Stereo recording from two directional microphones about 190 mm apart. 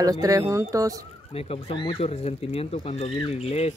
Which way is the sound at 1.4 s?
30° left (ahead or behind).